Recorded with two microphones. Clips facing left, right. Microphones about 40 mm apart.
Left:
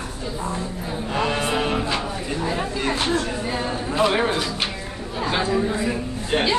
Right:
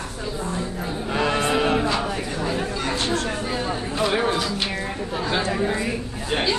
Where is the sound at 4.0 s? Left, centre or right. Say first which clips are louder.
Left 2 dB; centre.